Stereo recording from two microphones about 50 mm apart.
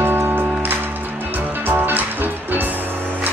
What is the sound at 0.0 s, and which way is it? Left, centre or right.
Music, right.